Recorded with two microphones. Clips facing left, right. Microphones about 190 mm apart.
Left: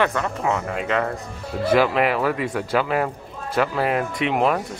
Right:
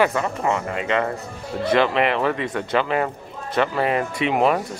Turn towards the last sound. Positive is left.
turn(degrees=0)  # may be behind; listen again after turning